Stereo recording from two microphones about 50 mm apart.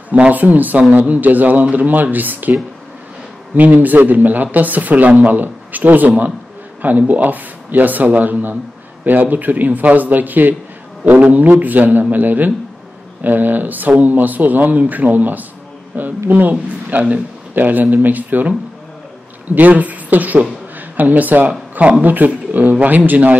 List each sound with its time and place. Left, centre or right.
0.1 s speech: right
3.5 s a man's voice: right
19.5 s speech: right